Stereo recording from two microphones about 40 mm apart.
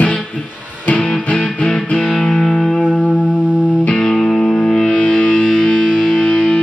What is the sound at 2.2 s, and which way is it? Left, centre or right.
Music, centre.